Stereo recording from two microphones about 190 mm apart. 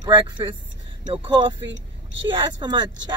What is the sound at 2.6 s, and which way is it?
Speech, 20° right (ahead or behind).